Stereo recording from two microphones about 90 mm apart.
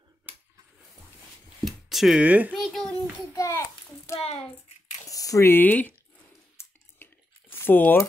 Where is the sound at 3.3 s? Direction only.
35° left (ahead or behind).